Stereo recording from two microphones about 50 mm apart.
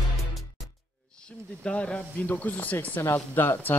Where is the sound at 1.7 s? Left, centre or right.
Left.